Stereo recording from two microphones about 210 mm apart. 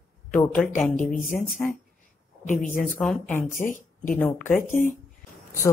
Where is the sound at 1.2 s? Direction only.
40° left (ahead or behind).